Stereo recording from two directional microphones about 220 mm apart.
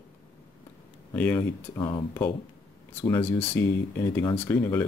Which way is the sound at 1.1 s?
10° left (ahead or behind).